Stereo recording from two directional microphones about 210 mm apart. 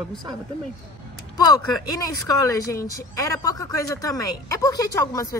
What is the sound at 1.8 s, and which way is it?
A woman's voice, 15° left (ahead or behind).